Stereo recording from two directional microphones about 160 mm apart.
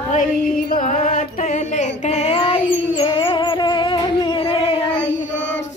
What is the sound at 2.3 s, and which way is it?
Child singing, 30° left (ahead or behind).